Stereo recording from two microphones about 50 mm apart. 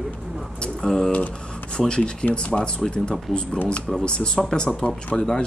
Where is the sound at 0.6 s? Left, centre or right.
Centre.